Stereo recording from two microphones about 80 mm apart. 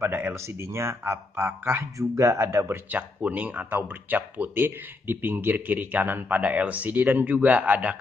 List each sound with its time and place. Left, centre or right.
0.0 s speech: right
2.9 s speech: centre